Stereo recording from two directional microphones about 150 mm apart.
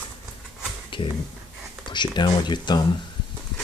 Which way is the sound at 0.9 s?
35° left (ahead or behind).